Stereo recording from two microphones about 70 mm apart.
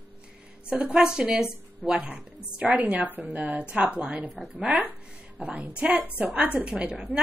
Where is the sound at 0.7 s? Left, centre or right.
Centre.